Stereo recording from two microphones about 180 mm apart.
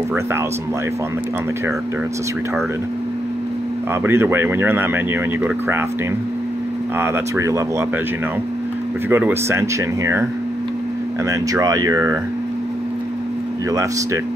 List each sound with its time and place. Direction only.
4.0 s speech: 15° right (ahead or behind)
7.0 s speech: 15° right (ahead or behind)
9.1 s speech: 10° right (ahead or behind)
11.2 s speech: 20° right (ahead or behind)